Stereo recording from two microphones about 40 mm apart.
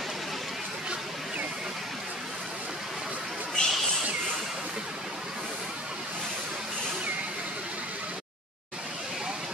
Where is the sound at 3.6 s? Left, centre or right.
Left.